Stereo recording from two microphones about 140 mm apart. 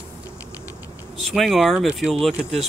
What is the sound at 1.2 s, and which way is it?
Speech, centre (ahead or behind).